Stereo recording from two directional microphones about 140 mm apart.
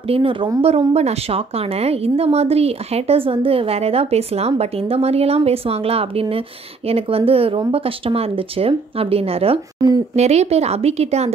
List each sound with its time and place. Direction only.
0.1 s a woman's voice: 40° right (ahead or behind)
9.8 s a woman's voice: 30° right (ahead or behind)
10.1 s a woman's voice: 50° right (ahead or behind)